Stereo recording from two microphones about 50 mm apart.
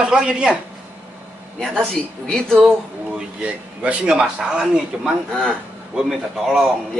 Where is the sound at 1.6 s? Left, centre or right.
Centre.